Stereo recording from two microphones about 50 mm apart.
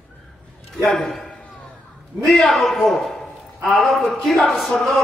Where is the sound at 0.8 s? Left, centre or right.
Centre.